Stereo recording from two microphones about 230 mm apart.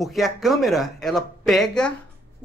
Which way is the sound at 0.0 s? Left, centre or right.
Centre.